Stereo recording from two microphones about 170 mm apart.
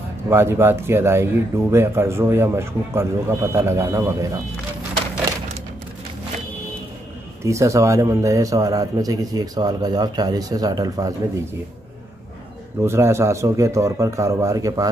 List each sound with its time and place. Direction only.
0.3 s speech: 15° right (ahead or behind)
7.4 s a man's voice: 15° right (ahead or behind)
12.8 s speech: 15° right (ahead or behind)